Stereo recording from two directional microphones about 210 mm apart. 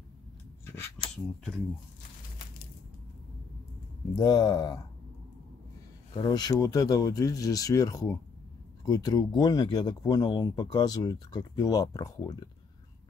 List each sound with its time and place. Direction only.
4.2 s speech: 20° left (ahead or behind)
6.1 s speech: 20° left (ahead or behind)